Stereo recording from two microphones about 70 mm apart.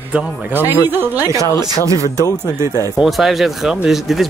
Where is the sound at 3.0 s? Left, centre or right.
Centre.